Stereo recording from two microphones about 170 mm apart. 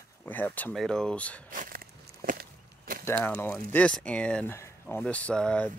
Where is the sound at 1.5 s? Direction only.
55° right (ahead or behind).